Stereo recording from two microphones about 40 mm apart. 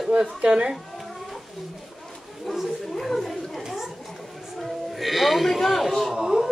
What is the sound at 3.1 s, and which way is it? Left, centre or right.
Chatter, centre.